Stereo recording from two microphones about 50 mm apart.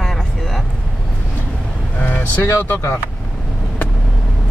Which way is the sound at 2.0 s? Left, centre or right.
Left.